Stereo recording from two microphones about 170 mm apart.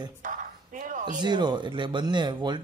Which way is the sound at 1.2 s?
25° right (ahead or behind).